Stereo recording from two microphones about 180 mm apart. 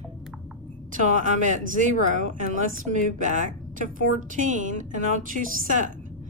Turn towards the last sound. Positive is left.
turn(degrees=-45)  # may be behind; listen again after turning